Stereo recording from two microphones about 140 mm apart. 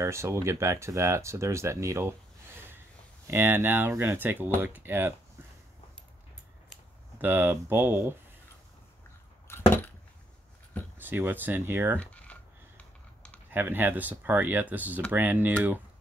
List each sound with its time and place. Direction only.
0.0 s speech: 20° right (ahead or behind)
7.2 s speech: 15° right (ahead or behind)
11.0 s speech: 15° right (ahead or behind)
12.0 s typing: 10° left (ahead or behind)
13.5 s speech: 15° right (ahead or behind)